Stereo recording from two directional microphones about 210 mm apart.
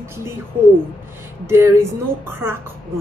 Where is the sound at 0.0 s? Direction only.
10° right (ahead or behind).